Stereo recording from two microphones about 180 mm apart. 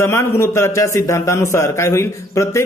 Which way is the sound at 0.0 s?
15° left (ahead or behind).